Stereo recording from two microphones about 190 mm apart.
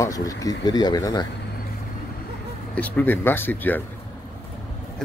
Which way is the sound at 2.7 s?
10° left (ahead or behind).